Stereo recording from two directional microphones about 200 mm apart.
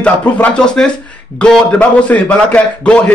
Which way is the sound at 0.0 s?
5° left (ahead or behind).